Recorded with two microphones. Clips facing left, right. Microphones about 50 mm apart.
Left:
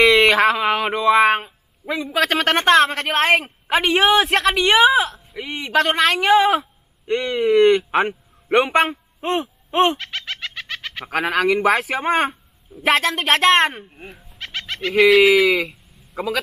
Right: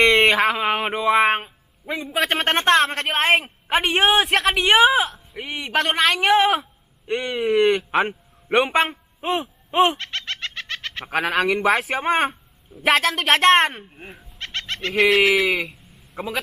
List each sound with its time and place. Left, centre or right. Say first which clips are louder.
0.0 s a sound: left 2 dB; centre
0.7 s a woman's voice: left 3 dB; centre
9.9 s bird: even; centre
11.1 s a woman's voice: left 2 dB; centre
14.4 s fowl: left 2 dB; centre